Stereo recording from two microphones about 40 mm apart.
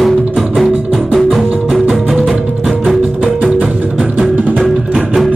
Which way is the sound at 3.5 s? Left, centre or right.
Right.